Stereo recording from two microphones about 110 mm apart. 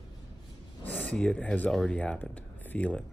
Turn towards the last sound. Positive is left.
turn(degrees=10)  # may be behind; listen again after turning